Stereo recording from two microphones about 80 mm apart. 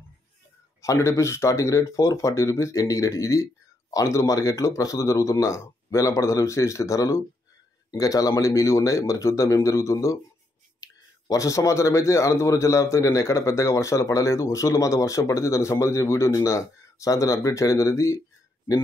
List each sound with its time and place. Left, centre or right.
0.8 s speech: left